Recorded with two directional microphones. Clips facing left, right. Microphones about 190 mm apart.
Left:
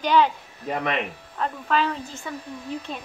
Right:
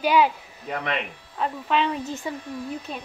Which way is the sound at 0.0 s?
10° right (ahead or behind).